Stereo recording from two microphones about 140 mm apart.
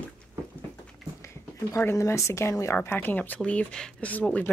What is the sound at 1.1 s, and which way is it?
A woman's voice, 20° left (ahead or behind).